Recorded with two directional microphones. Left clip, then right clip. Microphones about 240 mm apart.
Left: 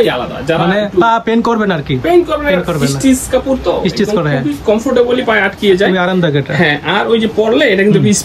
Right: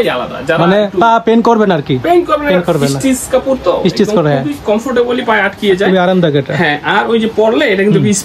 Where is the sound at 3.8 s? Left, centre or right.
Centre.